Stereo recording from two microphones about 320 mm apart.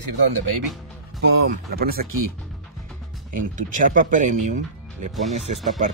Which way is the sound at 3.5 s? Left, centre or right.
Right.